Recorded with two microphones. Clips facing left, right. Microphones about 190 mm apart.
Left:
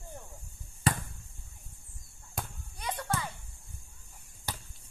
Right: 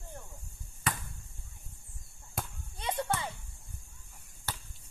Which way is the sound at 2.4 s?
Centre (ahead or behind).